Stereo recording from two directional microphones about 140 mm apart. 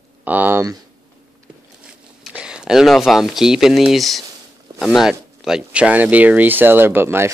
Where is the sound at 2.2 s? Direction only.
5° right (ahead or behind).